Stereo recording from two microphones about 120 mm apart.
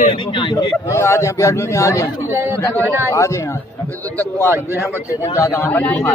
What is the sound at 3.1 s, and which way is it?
Speech, 25° left (ahead or behind).